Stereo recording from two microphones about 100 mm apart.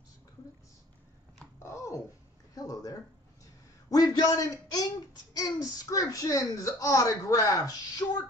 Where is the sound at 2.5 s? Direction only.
40° left (ahead or behind).